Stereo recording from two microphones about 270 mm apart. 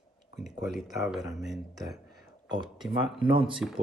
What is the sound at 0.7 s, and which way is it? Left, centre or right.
Speech, centre.